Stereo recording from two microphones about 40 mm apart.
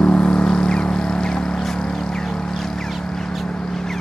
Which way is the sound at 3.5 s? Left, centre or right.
Centre.